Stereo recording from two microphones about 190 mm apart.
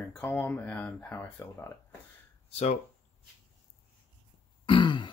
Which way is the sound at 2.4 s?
35° left (ahead or behind).